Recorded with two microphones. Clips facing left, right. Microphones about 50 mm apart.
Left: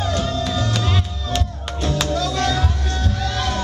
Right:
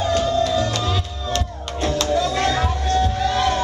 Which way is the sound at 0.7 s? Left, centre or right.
Centre.